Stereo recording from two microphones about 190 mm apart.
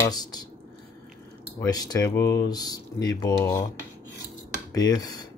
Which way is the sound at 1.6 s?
20° left (ahead or behind).